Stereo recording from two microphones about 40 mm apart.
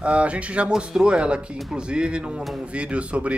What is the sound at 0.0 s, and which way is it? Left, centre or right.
Speech, right.